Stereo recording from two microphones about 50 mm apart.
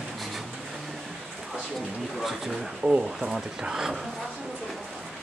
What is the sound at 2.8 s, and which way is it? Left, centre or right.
Speech, right.